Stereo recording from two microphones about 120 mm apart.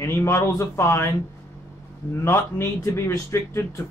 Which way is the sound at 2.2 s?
20° left (ahead or behind).